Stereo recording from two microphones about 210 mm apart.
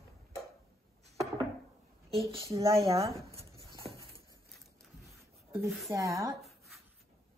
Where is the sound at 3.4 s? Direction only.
25° right (ahead or behind).